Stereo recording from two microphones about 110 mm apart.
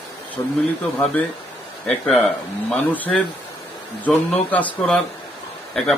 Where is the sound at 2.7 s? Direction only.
15° left (ahead or behind).